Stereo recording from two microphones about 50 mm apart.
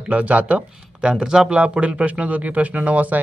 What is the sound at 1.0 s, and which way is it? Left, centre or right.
Speech, centre.